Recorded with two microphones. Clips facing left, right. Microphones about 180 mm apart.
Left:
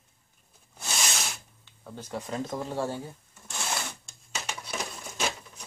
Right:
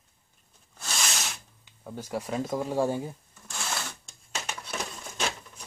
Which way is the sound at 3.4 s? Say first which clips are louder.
Left 2 dB; 20° left (ahead or behind).